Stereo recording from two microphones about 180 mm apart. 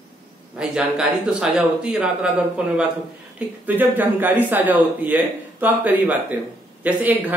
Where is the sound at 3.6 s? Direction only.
10° right (ahead or behind).